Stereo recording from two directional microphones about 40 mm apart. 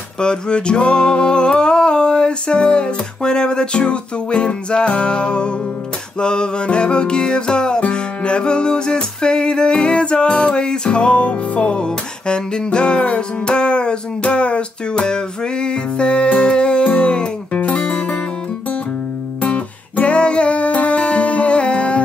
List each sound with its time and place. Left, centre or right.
0.2 s a sound: left
7.9 s music: left
19.4 s music: left